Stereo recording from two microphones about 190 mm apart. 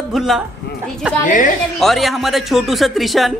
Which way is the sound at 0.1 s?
Centre (ahead or behind).